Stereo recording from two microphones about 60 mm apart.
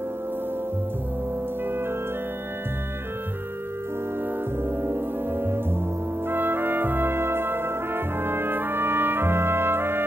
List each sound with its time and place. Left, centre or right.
4.6 s music: right
6.2 s brass instrument: right